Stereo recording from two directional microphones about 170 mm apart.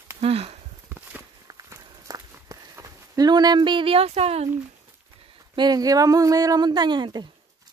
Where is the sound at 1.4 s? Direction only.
20° right (ahead or behind); by 4.5 s 35° right (ahead or behind).